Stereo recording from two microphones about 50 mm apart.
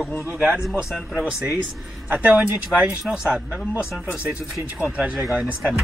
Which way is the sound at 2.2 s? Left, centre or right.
Right.